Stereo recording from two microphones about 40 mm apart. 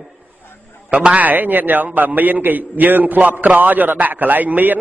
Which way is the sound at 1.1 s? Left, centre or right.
Right.